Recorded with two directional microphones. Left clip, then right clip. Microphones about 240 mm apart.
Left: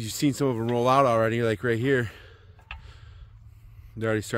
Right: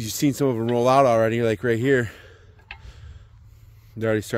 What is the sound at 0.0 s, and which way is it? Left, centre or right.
Speech, centre.